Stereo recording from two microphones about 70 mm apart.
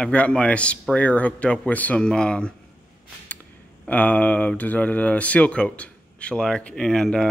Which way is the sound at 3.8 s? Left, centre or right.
Centre.